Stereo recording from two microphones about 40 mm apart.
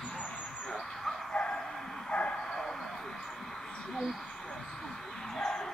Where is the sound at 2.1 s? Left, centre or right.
Left.